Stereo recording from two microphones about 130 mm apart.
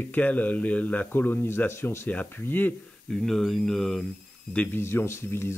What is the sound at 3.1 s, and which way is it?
Speech, 5° left (ahead or behind).